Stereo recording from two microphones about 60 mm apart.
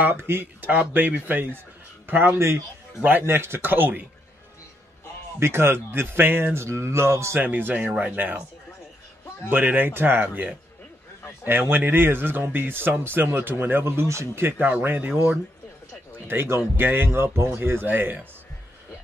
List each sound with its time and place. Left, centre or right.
0.0 s a man's voice: right
2.3 s speech: right
3.1 s speech: right
5.4 s speech: right
7.3 s speech: right
9.5 s speech: right
11.7 s speech: right
14.6 s speech: right